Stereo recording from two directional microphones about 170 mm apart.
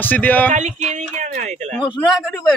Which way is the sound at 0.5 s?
45° right (ahead or behind).